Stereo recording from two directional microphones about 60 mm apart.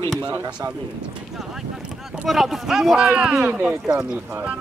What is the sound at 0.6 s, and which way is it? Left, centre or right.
Speech, right.